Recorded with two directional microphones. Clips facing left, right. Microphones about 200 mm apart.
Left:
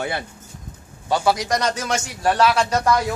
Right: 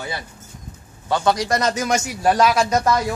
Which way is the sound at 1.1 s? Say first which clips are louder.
Even; 5° left (ahead or behind).